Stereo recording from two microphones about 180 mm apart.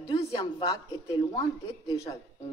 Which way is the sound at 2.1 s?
25° left (ahead or behind).